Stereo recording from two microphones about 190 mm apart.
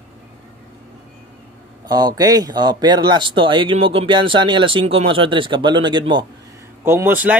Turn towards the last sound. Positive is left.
turn(degrees=-10)  # may be behind; listen again after turning